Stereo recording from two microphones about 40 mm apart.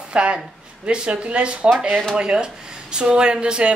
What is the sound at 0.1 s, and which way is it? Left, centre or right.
Speech, right.